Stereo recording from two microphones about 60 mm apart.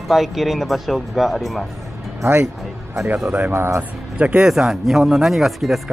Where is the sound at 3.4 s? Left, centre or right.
Right.